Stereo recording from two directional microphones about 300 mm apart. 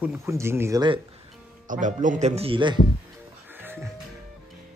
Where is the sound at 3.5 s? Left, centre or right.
Centre.